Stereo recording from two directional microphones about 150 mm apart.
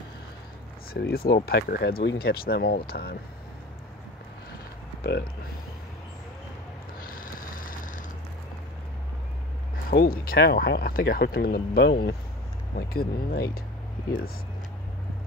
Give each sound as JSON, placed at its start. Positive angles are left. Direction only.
{"t": 0.9, "sound": "speech", "side_deg": 90}
{"t": 7.0, "sound": "vehicle", "side_deg": 70}
{"t": 9.8, "sound": "speech", "side_deg": 80}